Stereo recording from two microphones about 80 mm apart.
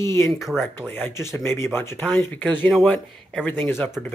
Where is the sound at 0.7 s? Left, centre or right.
Left.